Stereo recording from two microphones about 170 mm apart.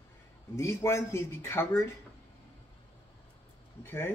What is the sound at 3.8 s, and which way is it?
Speech, 10° left (ahead or behind).